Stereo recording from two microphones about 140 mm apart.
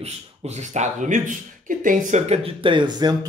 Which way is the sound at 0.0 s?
55° right (ahead or behind).